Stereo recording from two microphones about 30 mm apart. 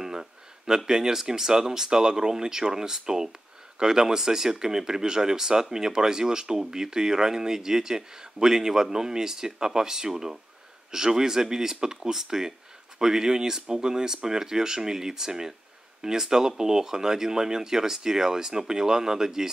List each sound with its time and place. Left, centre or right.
0.0 s speech: centre